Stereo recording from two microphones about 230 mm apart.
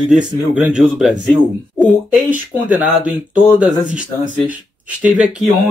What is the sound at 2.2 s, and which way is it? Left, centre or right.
Speech, centre.